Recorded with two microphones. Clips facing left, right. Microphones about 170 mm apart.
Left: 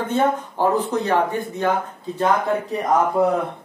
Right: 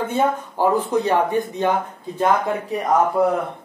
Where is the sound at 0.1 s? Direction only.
10° right (ahead or behind).